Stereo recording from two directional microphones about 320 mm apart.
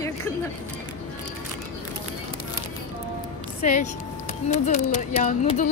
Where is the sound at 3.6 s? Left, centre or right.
Left.